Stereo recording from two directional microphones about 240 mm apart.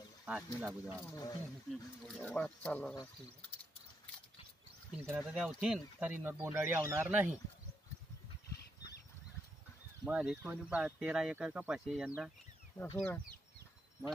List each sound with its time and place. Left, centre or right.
0.2 s a sound: centre
0.6 s speech: centre
0.9 s speech: centre
4.9 s speech: centre
10.0 s speech: centre
12.7 s speech: centre